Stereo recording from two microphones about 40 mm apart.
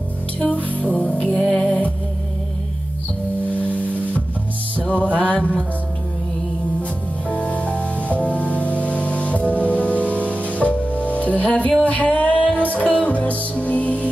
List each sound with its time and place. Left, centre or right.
0.4 s music: left
1.4 s music: centre
3.5 s music: left
6.8 s music: left